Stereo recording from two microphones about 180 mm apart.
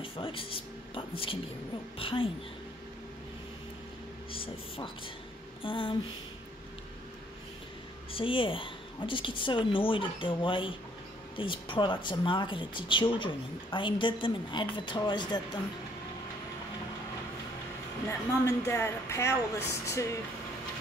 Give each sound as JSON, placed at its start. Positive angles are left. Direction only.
{"t": 0.0, "sound": "speech", "side_deg": 30}
{"t": 4.3, "sound": "speech", "side_deg": 30}
{"t": 8.1, "sound": "speech", "side_deg": 30}
{"t": 18.4, "sound": "speech", "side_deg": 15}